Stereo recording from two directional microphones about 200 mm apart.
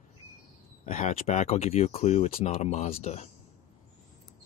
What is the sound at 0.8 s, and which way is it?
Speech, 35° left (ahead or behind).